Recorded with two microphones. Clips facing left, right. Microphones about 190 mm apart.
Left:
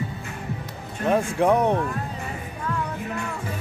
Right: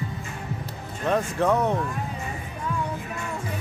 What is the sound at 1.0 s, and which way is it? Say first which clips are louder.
Speech: left 3 dB; 15° left (ahead or behind).